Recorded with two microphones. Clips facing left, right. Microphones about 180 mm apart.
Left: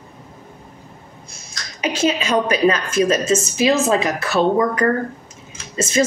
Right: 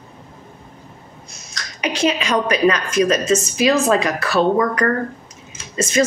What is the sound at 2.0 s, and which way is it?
A woman's voice, 25° left (ahead or behind).